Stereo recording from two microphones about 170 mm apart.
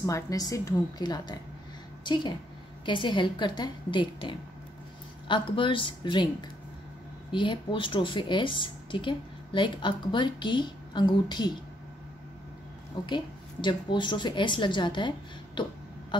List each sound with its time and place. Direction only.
0.0 s a woman's voice: 20° left (ahead or behind)
7.3 s a woman's voice: 30° left (ahead or behind)
13.0 s a woman's voice: 25° left (ahead or behind)